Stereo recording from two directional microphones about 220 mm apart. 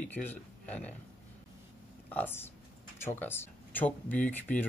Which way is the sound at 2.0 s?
10° left (ahead or behind).